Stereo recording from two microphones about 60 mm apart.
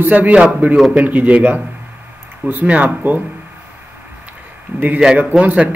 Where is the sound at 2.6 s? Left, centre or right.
Right.